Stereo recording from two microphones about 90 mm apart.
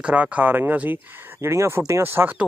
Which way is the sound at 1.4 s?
30° right (ahead or behind).